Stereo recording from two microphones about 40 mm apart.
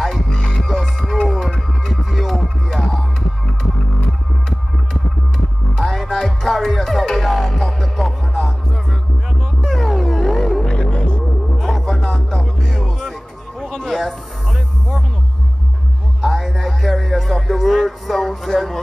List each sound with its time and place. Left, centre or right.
0.0 s music: centre
5.9 s music: centre
9.7 s music: centre
11.5 s music: centre
11.8 s music: centre
16.2 s music: centre